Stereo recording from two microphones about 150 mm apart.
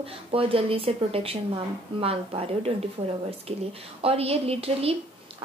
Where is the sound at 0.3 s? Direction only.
40° right (ahead or behind).